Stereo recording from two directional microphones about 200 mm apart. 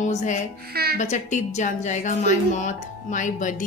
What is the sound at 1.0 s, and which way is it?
A woman's voice, 35° left (ahead or behind).